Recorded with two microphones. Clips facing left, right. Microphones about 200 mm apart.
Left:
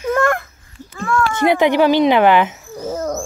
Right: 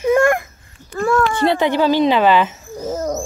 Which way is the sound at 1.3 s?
15° left (ahead or behind).